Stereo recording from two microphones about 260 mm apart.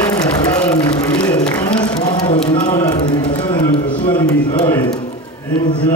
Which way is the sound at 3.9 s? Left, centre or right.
Centre.